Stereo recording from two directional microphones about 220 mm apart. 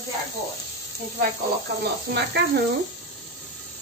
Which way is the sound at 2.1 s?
50° right (ahead or behind).